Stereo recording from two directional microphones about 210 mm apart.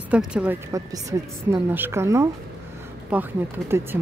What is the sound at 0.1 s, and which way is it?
Speech, 5° right (ahead or behind).